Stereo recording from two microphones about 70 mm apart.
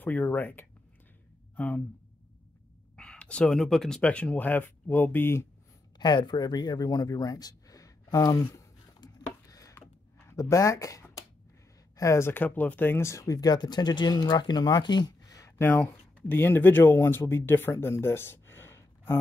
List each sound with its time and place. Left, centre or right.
0.0 s speech: left
3.0 s a sound: centre
3.5 s speech: centre; by 5.5 s left
5.9 s speech: left
9.0 s chopping: left
10.3 s speech: left
12.0 s speech: left
15.5 s speech: left